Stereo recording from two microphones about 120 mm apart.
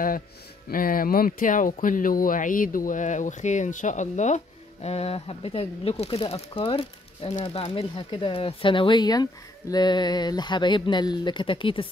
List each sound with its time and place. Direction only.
1.4 s speech: 90° left
4.8 s speech: 60° left (ahead or behind)